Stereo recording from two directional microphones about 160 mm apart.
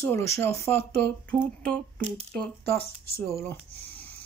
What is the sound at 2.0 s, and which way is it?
Speech, 40° right (ahead or behind).